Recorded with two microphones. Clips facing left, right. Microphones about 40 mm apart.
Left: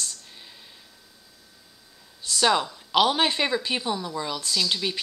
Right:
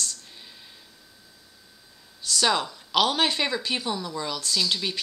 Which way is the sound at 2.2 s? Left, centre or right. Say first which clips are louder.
Right 2 dB; left.